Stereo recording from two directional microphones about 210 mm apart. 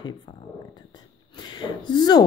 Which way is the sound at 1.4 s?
20° left (ahead or behind).